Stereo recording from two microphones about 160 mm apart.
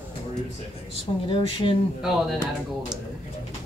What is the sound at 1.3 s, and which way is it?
Speech, 30° left (ahead or behind).